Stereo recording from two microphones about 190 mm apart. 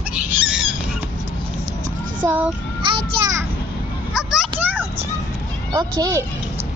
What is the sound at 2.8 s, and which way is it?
Speech, 25° right (ahead or behind).